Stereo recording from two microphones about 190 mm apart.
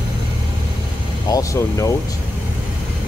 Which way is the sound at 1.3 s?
15° left (ahead or behind).